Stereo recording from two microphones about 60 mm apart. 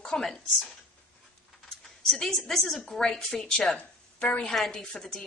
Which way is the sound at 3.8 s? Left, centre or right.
Centre.